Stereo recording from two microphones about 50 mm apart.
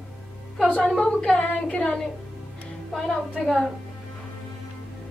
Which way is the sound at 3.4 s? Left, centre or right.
Centre.